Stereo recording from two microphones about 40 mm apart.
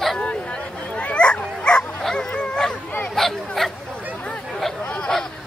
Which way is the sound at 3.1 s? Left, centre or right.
Centre.